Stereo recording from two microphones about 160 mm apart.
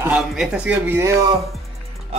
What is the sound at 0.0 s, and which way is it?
A man's voice, 5° right (ahead or behind).